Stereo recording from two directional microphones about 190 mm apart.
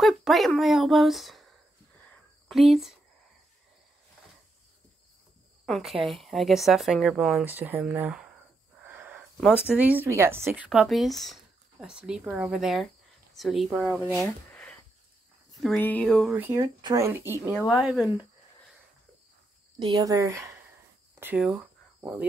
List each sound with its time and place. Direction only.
0.0 s speech: centre (ahead or behind)
5.7 s speech: centre (ahead or behind)
8.8 s a sound: 10° right (ahead or behind)
9.7 s a woman's voice: 5° right (ahead or behind)
16.3 s speech: 10° right (ahead or behind)
17.7 s speech: centre (ahead or behind)
19.8 s speech: 25° right (ahead or behind)
21.1 s a sound: 10° right (ahead or behind)